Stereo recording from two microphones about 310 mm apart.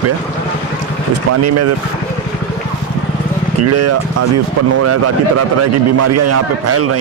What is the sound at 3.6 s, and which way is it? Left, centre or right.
Speech, right.